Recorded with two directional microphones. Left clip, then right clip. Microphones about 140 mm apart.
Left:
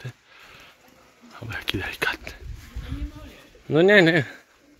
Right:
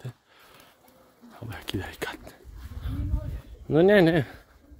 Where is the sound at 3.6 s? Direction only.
20° right (ahead or behind).